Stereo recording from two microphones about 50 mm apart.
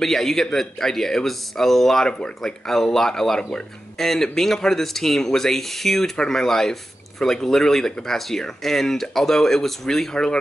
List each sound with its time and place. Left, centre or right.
0.0 s speech: centre
2.0 s speech: centre
10.1 s speech: centre